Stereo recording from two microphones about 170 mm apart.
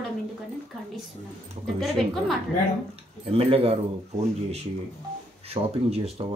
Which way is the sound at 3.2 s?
35° right (ahead or behind).